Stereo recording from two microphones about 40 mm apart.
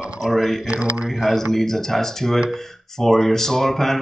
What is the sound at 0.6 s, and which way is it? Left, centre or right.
Speech, right.